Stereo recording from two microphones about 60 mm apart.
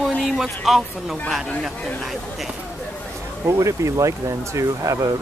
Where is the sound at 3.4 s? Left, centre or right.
Right.